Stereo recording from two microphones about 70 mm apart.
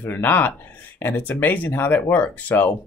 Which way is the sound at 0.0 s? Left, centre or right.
Left.